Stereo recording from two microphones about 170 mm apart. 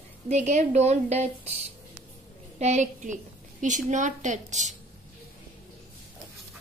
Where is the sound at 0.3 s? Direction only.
45° right (ahead or behind).